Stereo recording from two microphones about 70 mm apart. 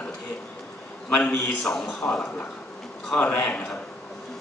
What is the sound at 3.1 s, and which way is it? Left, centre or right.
Speech, left.